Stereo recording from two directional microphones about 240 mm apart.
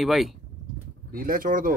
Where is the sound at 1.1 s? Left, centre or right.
Right.